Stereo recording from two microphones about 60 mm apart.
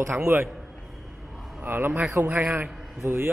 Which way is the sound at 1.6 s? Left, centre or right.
Right.